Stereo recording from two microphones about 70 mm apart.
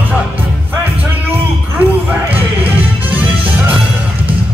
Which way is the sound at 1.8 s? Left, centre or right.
Right.